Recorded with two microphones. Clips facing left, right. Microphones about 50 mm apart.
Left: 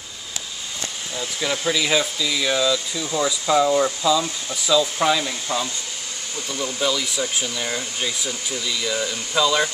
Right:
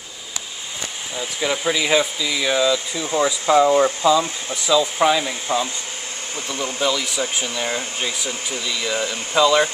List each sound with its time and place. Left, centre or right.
1.1 s speech: centre
6.8 s speech: centre